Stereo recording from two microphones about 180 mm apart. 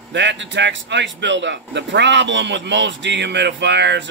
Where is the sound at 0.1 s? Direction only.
85° right.